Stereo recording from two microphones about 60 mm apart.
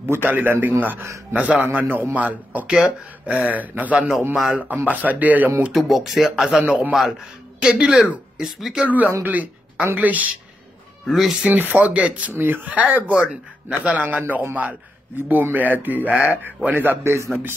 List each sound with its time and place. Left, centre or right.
0.0 s a man's voice: right
2.6 s a man's voice: centre
5.7 s speech: centre
8.8 s a man's voice: right
11.1 s speech: centre
11.4 s a man's voice: right
16.6 s a man's voice: right
17.0 s a man's voice: right